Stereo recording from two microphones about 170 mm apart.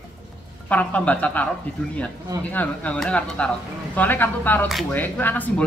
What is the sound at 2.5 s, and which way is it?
Speech, 10° left (ahead or behind).